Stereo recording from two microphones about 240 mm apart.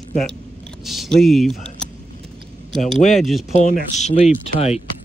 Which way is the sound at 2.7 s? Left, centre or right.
Centre.